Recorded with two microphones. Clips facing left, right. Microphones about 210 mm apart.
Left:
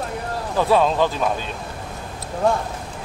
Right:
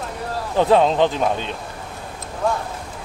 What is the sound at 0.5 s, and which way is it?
Speech, 20° right (ahead or behind).